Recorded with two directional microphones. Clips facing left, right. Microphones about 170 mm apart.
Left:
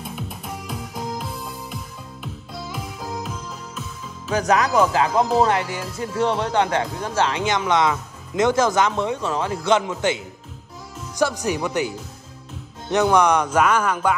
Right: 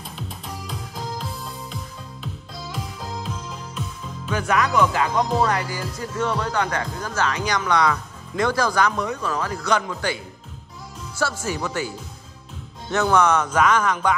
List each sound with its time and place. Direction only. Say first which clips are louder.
0.5 s music: left 2 dB; 5° left (ahead or behind)
4.3 s music: left 3 dB; 40° left (ahead or behind); by 10.2 s 20° left (ahead or behind)
11.1 s speech: left 4 dB; 15° left (ahead or behind)
12.9 s speech: left 2 dB; 15° left (ahead or behind)